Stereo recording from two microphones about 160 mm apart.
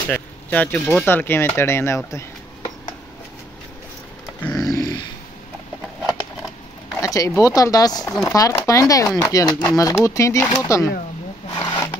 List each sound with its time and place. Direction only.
0.1 s speech: 10° left (ahead or behind)
4.4 s a sound: 10° left (ahead or behind)
4.6 s grunt: 25° left (ahead or behind)
7.0 s speech: 20° left (ahead or behind)
8.0 s speech: 5° left (ahead or behind)
8.3 s speech: 20° left (ahead or behind)
11.5 s a sound: 25° left (ahead or behind)